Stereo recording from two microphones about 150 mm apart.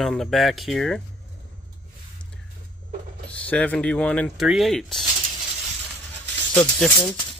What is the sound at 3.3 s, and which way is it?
Speech, 10° left (ahead or behind).